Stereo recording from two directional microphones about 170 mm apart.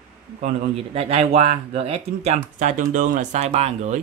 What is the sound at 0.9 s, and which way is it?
Speech, 35° right (ahead or behind).